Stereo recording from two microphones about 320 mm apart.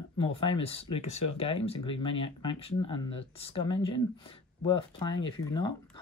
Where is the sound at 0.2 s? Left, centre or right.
Centre.